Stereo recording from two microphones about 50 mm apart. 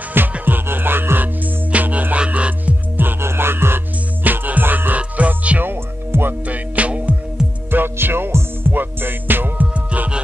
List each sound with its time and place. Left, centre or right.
0.2 s music: right
3.0 s music: right
4.2 s music: right
5.6 s music: right
6.4 s music: right
7.4 s music: centre
7.7 s music: right
8.7 s music: right
9.8 s music: right